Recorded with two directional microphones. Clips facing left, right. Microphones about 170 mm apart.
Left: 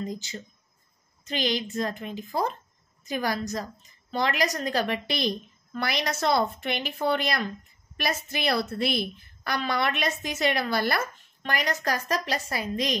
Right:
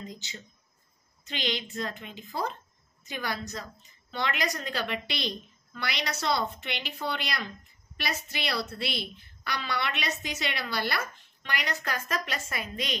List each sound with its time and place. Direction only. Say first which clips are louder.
0.0 s a woman's voice: left 8 dB; 45° left (ahead or behind)